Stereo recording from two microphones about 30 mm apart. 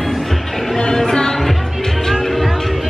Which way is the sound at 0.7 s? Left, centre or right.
Left.